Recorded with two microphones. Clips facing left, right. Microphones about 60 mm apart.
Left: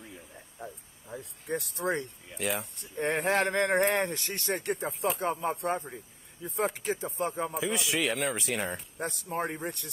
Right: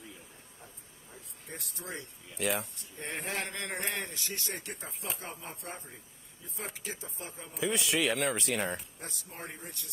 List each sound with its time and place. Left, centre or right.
1.1 s speech: left
2.3 s speech: centre
2.8 s speech: left
7.5 s speech: centre
9.0 s speech: left